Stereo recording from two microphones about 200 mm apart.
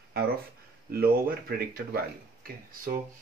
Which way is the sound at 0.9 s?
50° right (ahead or behind).